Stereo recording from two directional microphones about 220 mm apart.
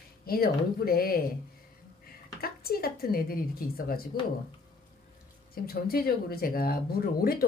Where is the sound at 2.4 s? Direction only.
45° left (ahead or behind).